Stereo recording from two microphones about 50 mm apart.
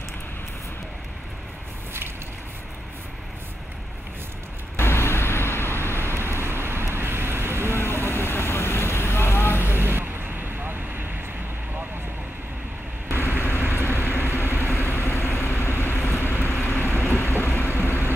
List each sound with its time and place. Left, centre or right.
4.7 s vehicle: left
6.1 s vehicle: right
7.7 s vehicle: left
9.8 s vehicle: right
13.1 s vehicle: right
13.8 s vehicle: left